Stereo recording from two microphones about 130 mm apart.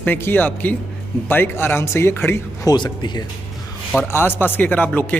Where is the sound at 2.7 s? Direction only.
30° left (ahead or behind).